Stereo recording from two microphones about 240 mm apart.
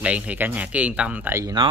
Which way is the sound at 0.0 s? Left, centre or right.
Centre.